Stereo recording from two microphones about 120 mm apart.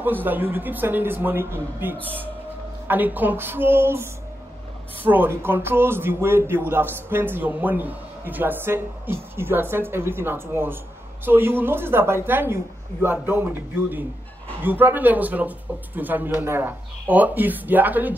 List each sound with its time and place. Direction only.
0.0 s speech: 15° right (ahead or behind)